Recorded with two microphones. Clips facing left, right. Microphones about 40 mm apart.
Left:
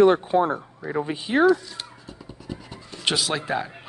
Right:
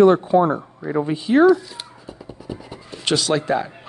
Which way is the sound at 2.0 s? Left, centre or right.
Centre.